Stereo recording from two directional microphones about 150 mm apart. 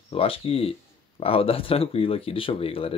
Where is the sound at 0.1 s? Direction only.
40° left (ahead or behind).